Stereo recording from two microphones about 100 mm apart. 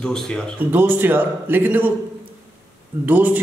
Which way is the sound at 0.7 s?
20° right (ahead or behind).